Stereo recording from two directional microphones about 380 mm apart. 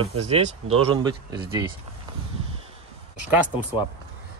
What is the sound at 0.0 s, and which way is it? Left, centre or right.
Speech, centre.